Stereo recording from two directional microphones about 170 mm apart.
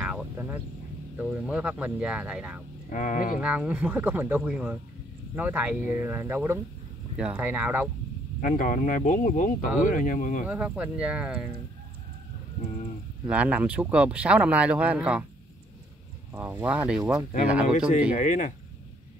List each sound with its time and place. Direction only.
0.0 s vehicle: 5° right (ahead or behind)
1.1 s speech: 5° right (ahead or behind)
2.9 s speech: 50° left (ahead or behind)
3.3 s speech: 10° right (ahead or behind)
8.4 s speech: 50° left (ahead or behind)
10.5 s speech: 10° right (ahead or behind)
13.3 s speech: 10° right (ahead or behind)
16.3 s speech: 15° right (ahead or behind)
17.7 s speech: 50° left (ahead or behind)